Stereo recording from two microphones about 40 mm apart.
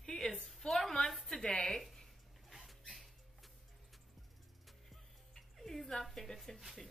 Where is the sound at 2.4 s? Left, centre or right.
Centre.